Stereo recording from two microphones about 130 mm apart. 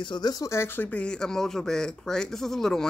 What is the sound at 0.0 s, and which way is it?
Speech, 35° left (ahead or behind).